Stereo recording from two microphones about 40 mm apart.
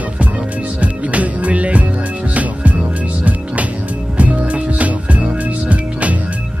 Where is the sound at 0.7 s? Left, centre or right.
Right.